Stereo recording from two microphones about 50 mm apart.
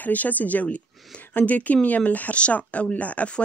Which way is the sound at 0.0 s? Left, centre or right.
Left.